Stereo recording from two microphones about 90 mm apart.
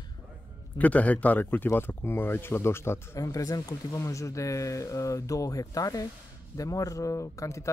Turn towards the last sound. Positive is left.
turn(degrees=35)  # may be behind; listen again after turning